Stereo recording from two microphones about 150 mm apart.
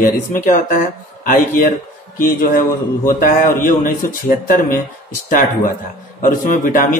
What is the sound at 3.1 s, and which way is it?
Speech, 70° left (ahead or behind).